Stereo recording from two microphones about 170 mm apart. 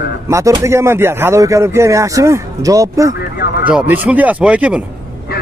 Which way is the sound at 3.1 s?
70° left (ahead or behind).